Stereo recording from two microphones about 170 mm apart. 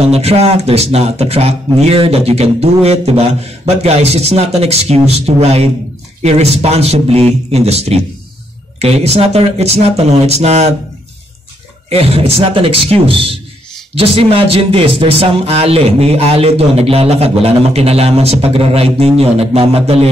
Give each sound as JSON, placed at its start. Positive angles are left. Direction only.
{"t": 0.0, "sound": "speech", "side_deg": -35}
{"t": 11.9, "sound": "speech", "side_deg": -35}